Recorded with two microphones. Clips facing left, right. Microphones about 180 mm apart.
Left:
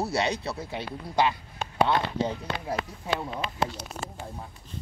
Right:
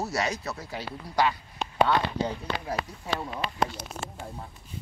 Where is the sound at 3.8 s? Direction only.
Centre (ahead or behind).